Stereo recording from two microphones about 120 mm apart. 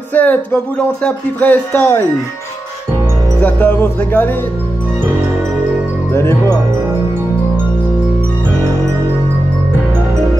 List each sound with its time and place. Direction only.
0.1 s speech: 15° left (ahead or behind)
3.4 s speech: 15° left (ahead or behind)
6.1 s speech: 25° left (ahead or behind)